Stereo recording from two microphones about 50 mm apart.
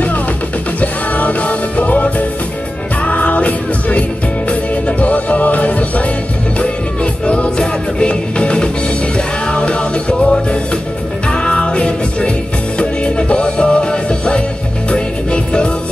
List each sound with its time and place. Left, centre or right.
0.7 s music: left